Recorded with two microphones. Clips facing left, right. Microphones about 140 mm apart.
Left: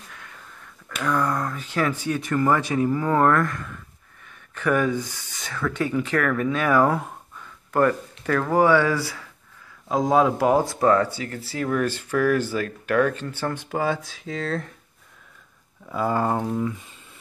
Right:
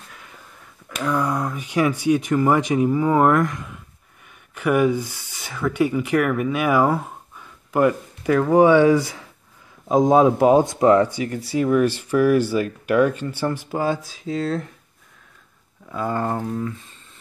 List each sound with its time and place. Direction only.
0.8 s speech: 10° right (ahead or behind)
15.9 s speech: 5° left (ahead or behind)